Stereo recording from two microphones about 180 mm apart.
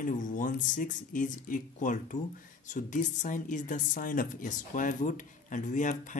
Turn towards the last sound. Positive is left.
turn(degrees=45)  # may be behind; listen again after turning